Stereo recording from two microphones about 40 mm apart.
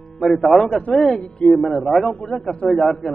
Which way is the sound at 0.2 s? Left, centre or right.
Centre.